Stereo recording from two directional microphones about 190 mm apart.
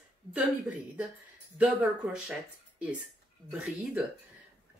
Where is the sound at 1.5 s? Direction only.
5° right (ahead or behind).